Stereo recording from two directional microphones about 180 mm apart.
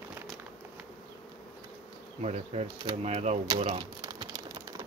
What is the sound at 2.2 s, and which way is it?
Speech, 35° right (ahead or behind).